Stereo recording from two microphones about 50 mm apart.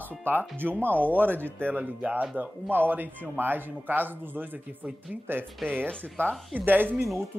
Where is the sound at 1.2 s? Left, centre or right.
Right.